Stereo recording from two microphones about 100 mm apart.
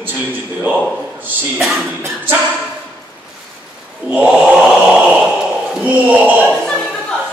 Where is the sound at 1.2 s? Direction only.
20° right (ahead or behind).